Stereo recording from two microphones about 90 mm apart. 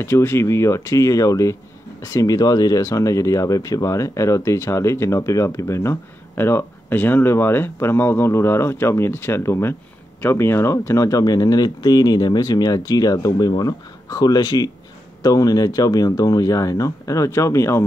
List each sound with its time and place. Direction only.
0.0 s speech: 25° left (ahead or behind)
2.2 s speech: 45° left (ahead or behind)